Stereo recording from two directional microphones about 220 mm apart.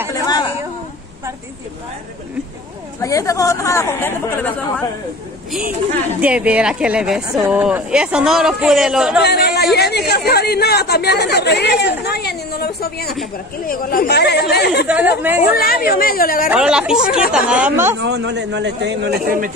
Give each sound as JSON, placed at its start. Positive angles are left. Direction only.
{"t": 3.0, "sound": "speech", "side_deg": 15}
{"t": 6.2, "sound": "speech", "side_deg": -5}
{"t": 9.2, "sound": "speech", "side_deg": 45}
{"t": 14.9, "sound": "speech", "side_deg": -5}
{"t": 15.4, "sound": "a woman's voice", "side_deg": 45}
{"t": 16.4, "sound": "speech", "side_deg": -5}
{"t": 18.0, "sound": "a man's voice", "side_deg": -50}